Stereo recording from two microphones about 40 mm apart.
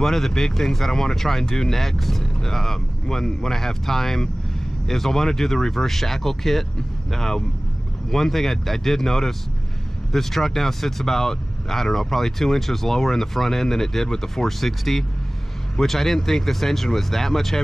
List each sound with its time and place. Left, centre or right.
0.0 s speech: centre